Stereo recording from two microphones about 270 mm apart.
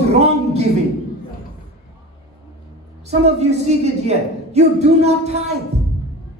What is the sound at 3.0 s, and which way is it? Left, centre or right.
A man's voice, right.